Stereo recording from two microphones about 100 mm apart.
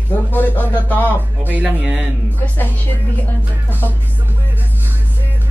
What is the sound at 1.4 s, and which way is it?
Speech, 15° right (ahead or behind).